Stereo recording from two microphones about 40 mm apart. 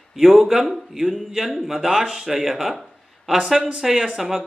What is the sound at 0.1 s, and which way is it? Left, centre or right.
A man's voice, centre.